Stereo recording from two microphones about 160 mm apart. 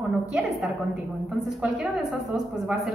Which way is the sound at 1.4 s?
Centre (ahead or behind).